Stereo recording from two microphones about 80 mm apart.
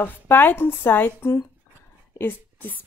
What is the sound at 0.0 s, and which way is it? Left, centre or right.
A woman's voice, left.